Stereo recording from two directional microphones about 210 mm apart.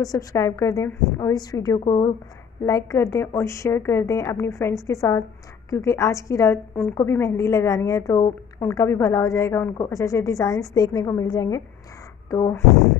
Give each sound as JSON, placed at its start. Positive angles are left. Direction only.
{"t": 0.0, "sound": "a woman's voice", "side_deg": 15}